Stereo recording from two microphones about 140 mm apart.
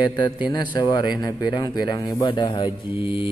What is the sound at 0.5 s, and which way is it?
Mantra, 30° left (ahead or behind).